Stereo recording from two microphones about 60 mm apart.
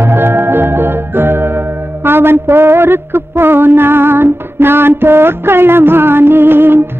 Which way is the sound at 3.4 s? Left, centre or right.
Right.